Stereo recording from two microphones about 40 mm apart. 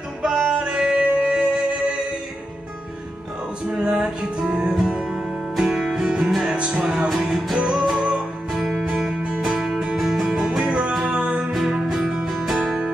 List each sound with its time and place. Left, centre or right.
0.2 s music: centre
3.6 s music: right
5.6 s music: centre
8.5 s music: centre
8.8 s music: centre
10.2 s music: centre